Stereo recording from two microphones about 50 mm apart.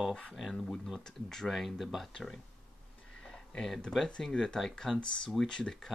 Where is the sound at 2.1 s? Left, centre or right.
Centre.